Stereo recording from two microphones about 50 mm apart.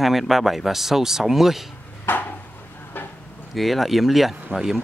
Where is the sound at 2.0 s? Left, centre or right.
Left.